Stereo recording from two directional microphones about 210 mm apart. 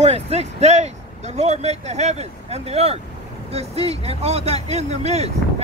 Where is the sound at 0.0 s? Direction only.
30° right (ahead or behind).